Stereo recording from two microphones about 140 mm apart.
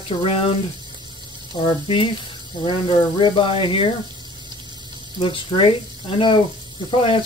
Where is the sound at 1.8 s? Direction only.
40° left (ahead or behind).